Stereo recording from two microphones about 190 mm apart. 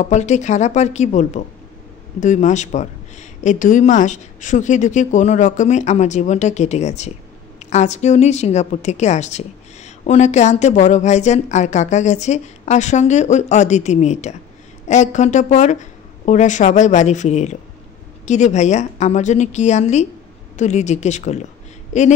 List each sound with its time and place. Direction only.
0.0 s speech: 40° left (ahead or behind)